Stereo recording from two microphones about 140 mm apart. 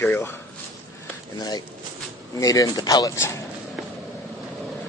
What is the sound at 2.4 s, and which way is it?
Speech, 25° left (ahead or behind).